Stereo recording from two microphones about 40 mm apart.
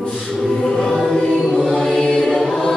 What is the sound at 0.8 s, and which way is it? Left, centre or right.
Music, centre.